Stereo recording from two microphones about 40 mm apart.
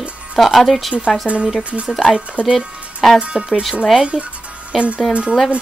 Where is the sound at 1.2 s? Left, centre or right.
Right.